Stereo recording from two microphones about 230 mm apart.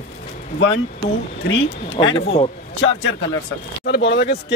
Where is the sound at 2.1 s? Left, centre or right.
Left.